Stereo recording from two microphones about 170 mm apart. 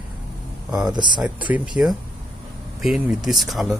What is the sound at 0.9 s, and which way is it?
Speech, 25° right (ahead or behind).